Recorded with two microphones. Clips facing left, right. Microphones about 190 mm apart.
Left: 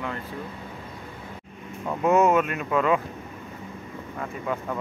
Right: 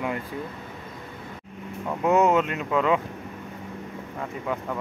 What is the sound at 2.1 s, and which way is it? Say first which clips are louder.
Speech: even; 20° right (ahead or behind).